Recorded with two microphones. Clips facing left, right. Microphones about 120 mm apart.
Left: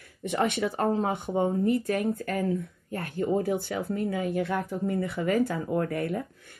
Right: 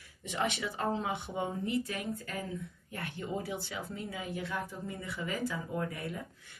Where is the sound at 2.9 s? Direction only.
45° left (ahead or behind).